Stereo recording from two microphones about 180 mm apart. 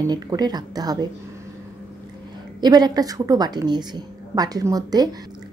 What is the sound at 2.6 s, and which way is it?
A woman's voice, 20° right (ahead or behind).